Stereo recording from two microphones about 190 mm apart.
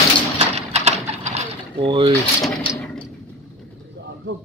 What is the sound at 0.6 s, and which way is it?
Bird, 35° right (ahead or behind).